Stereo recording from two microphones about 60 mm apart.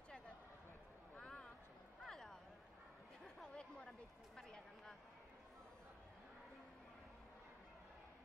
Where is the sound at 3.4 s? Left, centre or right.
Centre.